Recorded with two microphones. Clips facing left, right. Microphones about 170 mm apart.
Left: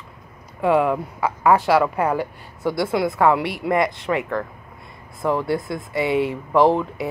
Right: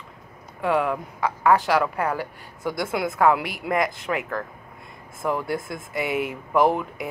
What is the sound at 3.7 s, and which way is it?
Speech, centre (ahead or behind).